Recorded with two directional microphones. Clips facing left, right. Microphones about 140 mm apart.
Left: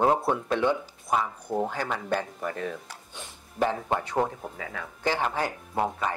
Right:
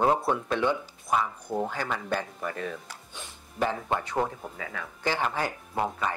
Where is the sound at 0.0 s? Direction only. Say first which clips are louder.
Left 1 dB; 20° left (ahead or behind).